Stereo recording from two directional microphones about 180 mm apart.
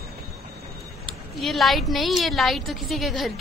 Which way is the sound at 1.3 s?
Centre (ahead or behind).